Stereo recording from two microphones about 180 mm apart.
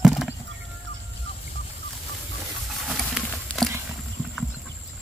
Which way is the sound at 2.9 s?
Centre (ahead or behind).